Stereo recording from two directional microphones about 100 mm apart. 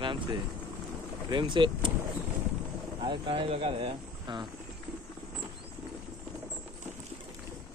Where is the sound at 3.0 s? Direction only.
60° right (ahead or behind).